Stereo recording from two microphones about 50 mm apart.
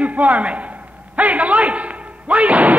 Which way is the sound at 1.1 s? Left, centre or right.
Right.